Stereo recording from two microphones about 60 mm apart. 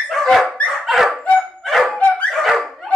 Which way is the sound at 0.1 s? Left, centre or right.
Centre.